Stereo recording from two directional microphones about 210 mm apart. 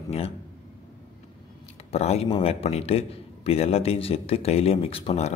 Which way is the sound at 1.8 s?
30° left (ahead or behind).